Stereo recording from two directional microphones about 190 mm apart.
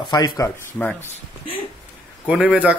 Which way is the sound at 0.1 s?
20° left (ahead or behind).